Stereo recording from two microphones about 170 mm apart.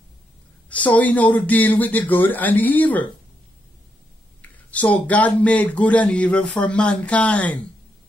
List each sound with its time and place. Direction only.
0.7 s speech: 10° left (ahead or behind)
4.4 s speech: 10° left (ahead or behind)